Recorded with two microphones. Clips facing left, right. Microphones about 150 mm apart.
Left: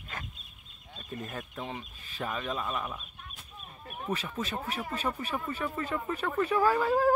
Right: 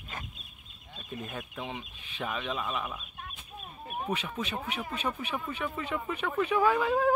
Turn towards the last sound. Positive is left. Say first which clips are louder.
# left 1 dB
turn(degrees=0)  # may be behind; listen again after turning